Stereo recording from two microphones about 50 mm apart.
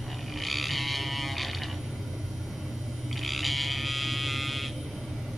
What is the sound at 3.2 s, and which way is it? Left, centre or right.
Buzzer, centre.